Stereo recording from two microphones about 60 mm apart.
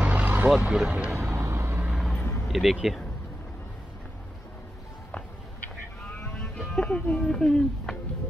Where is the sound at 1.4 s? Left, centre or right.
Right.